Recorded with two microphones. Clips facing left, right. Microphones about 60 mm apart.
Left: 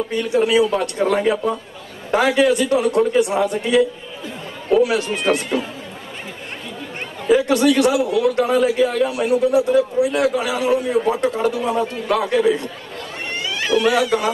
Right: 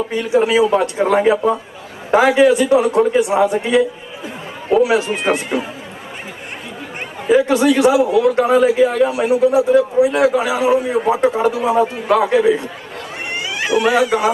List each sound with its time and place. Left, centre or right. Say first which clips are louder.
0.1 s a man's voice: right 2 dB; centre
7.2 s a man's voice: right 2 dB; centre
13.3 s cat: right 1 dB; centre